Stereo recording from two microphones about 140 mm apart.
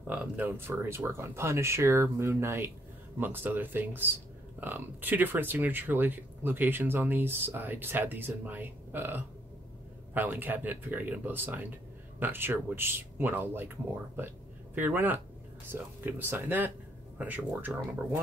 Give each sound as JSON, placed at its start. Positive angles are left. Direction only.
{"t": 0.0, "sound": "speech", "side_deg": -10}
{"t": 14.8, "sound": "speech", "side_deg": -15}